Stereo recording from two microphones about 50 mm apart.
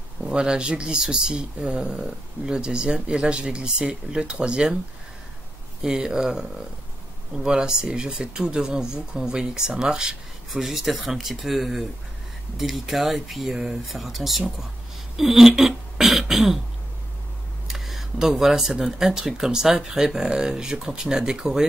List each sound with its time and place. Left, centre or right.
0.3 s speech: centre
5.8 s speech: centre
7.4 s speech: centre
15.1 s throat clearing: centre
17.6 s speech: centre